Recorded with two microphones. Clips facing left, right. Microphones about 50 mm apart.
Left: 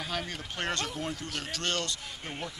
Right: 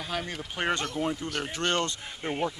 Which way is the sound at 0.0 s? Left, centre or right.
Centre.